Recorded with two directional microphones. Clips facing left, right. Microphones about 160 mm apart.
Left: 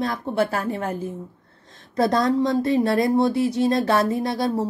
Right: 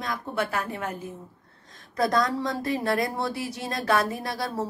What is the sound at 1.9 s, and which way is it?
Speech, 25° left (ahead or behind).